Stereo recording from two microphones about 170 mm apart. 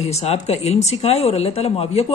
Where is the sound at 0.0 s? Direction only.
40° left (ahead or behind).